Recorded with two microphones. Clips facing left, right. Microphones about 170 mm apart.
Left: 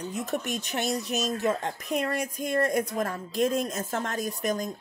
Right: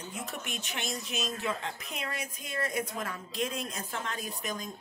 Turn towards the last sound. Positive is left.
turn(degrees=40)  # may be behind; listen again after turning